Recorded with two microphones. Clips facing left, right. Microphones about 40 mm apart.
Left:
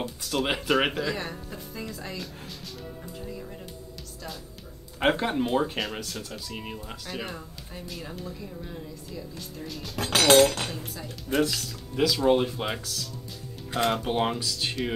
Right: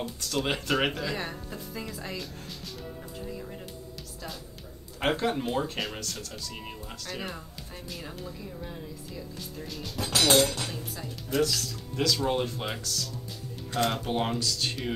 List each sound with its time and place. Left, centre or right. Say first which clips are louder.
0.0 s speech: left 2 dB; centre
1.1 s music: even; centre
5.0 s speech: left 3 dB; centre
9.9 s speech: left 4 dB; left
11.4 s speech: even; centre